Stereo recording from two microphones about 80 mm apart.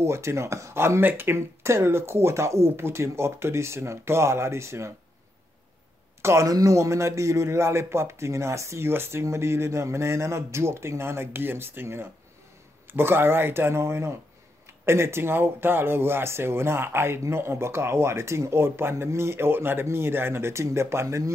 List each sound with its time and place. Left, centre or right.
0.0 s speech: right
6.2 s speech: right